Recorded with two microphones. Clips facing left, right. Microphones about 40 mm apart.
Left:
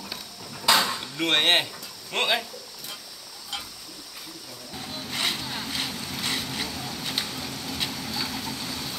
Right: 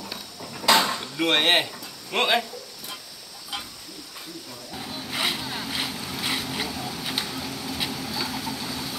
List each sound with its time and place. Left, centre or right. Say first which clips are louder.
0.6 s a sound: right 2 dB; right
1.0 s speech: right 1 dB; centre
4.7 s vehicle: right 2 dB; centre